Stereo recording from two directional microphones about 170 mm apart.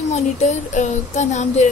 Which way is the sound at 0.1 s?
45° left (ahead or behind).